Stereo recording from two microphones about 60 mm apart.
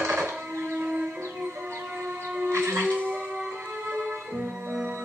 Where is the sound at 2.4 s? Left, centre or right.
Right.